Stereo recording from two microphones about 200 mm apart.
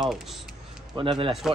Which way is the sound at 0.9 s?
25° right (ahead or behind).